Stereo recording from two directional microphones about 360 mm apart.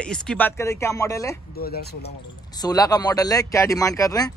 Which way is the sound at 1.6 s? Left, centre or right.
Left.